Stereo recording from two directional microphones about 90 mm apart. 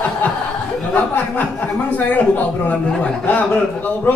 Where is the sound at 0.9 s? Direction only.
20° left (ahead or behind).